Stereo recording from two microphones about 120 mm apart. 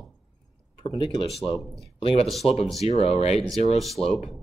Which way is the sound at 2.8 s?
60° left (ahead or behind).